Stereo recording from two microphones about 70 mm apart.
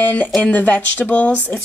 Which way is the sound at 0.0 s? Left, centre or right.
Left.